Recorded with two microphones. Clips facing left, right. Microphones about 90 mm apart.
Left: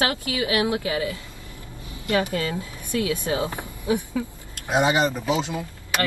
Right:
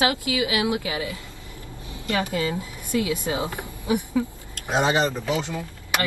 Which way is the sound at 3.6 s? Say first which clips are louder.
Even; 15° right (ahead or behind).